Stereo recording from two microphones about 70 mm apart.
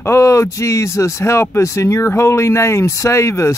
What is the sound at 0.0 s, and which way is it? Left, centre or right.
Speech, left.